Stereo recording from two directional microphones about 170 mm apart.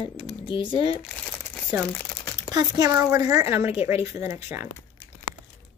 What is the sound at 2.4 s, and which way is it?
Speech, 25° right (ahead or behind).